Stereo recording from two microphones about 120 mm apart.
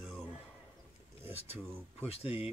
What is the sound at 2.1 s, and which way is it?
Speech, 55° left (ahead or behind).